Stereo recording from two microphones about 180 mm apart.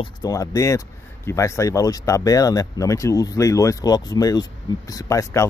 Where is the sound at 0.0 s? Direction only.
20° left (ahead or behind).